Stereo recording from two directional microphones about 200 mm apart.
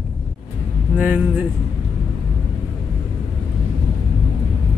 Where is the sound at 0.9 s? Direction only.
10° right (ahead or behind).